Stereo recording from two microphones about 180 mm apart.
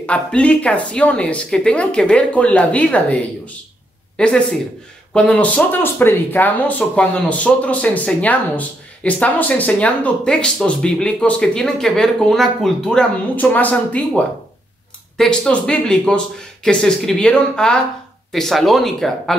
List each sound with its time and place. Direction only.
0.0 s speech: 5° left (ahead or behind)
4.2 s speech: 5° left (ahead or behind)